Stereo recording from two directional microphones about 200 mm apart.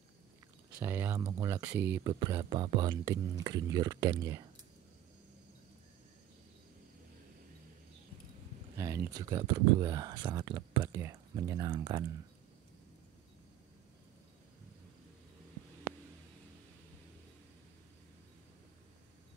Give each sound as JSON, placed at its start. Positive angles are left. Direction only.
{"t": 0.7, "sound": "speech", "side_deg": -10}
{"t": 8.7, "sound": "speech", "side_deg": -15}